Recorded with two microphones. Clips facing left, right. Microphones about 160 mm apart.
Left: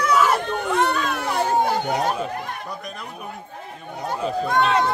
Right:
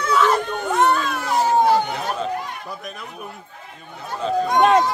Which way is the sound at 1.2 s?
60° left (ahead or behind).